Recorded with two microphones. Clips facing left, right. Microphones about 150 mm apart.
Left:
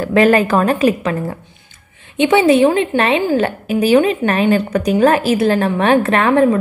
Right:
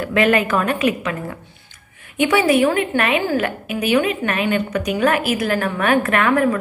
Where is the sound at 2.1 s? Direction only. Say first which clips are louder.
Left 4 dB; 25° left (ahead or behind).